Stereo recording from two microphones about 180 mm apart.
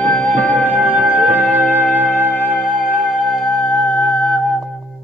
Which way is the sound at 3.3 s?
Centre (ahead or behind).